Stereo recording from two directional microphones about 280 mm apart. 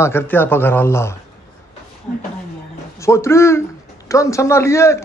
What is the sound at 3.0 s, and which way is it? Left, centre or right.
Speech, centre.